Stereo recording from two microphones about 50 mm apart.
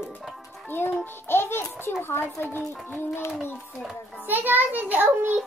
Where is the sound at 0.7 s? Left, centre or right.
Left.